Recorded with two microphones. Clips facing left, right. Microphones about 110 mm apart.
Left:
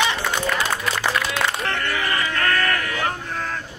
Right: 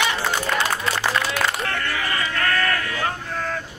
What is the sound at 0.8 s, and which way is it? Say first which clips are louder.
Music: even; 30° right (ahead or behind).